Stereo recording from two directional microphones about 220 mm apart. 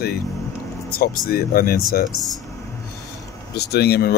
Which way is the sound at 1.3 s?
45° left (ahead or behind).